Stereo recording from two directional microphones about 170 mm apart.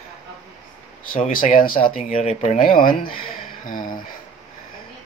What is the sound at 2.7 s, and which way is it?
A man's voice, 55° left (ahead or behind).